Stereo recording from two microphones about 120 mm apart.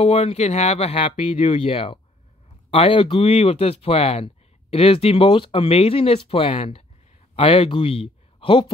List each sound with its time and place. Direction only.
0.0 s speech: 55° left (ahead or behind)